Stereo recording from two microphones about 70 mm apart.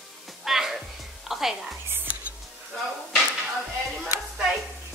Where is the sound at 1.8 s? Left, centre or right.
Right.